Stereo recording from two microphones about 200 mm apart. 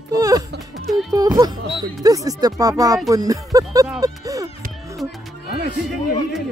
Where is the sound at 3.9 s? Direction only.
15° right (ahead or behind).